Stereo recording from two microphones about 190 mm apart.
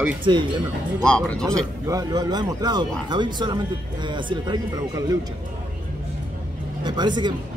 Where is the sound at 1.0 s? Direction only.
5° left (ahead or behind).